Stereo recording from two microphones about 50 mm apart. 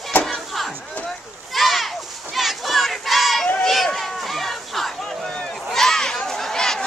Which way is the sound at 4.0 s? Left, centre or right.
Centre.